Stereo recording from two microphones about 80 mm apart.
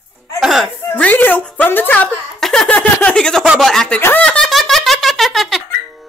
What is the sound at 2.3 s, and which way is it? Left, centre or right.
Laughter, centre.